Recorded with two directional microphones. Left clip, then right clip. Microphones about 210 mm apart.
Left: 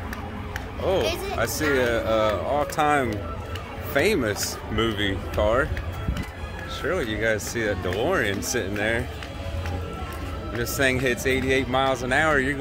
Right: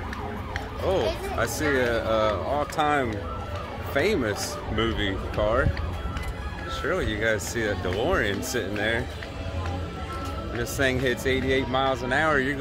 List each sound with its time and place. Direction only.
0.9 s speech: 10° left (ahead or behind)
6.8 s speech: 10° left (ahead or behind)
10.6 s speech: 15° left (ahead or behind)